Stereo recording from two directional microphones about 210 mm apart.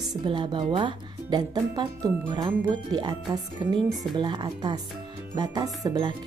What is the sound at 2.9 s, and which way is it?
Speech, 20° right (ahead or behind).